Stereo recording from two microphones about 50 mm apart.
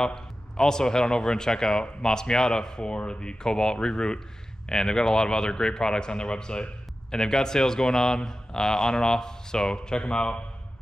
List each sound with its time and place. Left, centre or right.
0.0 s speech: centre